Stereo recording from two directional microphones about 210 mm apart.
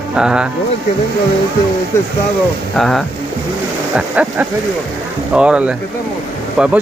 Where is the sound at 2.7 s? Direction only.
Centre (ahead or behind).